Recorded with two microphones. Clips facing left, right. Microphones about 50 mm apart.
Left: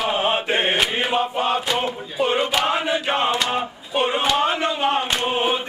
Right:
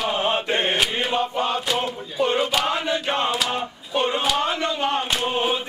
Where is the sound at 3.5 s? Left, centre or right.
Centre.